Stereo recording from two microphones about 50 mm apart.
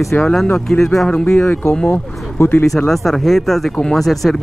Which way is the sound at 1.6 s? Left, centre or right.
Left.